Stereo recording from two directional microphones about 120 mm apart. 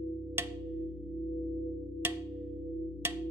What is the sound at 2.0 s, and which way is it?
Music, 20° right (ahead or behind).